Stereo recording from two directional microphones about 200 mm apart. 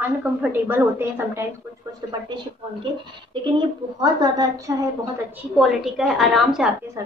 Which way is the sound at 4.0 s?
20° right (ahead or behind).